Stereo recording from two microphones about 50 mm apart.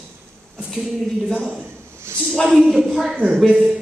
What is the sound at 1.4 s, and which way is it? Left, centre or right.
A man's voice, centre.